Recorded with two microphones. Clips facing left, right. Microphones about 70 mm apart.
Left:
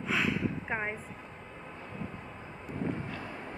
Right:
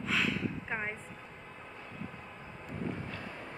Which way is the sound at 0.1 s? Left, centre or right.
Centre.